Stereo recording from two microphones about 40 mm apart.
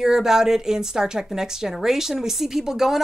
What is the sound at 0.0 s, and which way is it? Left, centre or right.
A woman's voice, centre.